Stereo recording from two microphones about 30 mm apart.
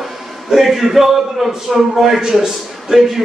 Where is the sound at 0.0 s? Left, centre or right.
Centre.